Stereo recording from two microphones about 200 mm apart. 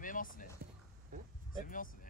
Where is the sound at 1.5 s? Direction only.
45° left (ahead or behind).